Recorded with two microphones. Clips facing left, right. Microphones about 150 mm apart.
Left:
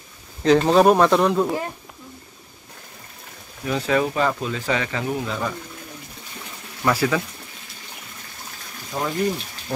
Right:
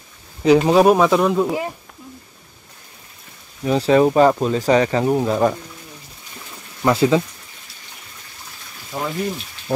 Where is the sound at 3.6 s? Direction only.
30° right (ahead or behind).